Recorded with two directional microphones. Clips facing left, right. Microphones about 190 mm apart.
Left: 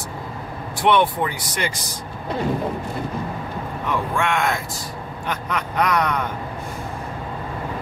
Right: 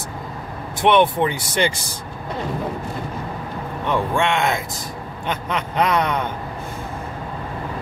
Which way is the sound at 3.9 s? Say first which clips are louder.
Right 3 dB; 25° right (ahead or behind).